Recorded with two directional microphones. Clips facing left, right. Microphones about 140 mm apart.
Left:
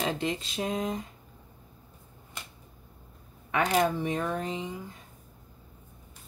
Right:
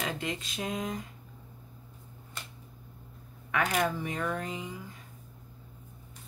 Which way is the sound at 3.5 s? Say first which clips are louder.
Left 4 dB; 30° left (ahead or behind).